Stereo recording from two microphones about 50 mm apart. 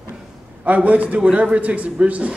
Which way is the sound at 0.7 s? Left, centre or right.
Right.